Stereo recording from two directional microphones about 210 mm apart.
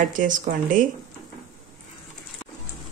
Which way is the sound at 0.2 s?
40° right (ahead or behind).